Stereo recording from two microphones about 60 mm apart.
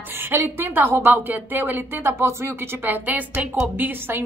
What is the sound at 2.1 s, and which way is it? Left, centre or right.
Speech, right.